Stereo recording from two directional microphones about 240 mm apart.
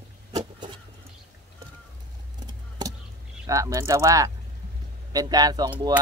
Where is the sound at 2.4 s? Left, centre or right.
Centre.